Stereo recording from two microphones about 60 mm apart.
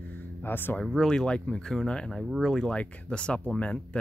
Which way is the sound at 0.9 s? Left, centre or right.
Centre.